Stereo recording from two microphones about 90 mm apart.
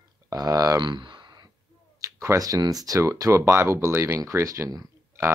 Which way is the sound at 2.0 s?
35° right (ahead or behind).